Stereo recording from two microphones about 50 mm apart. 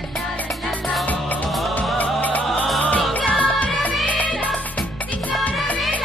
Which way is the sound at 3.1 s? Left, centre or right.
Left.